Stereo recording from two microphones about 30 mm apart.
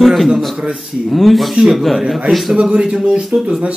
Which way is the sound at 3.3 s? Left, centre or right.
Right.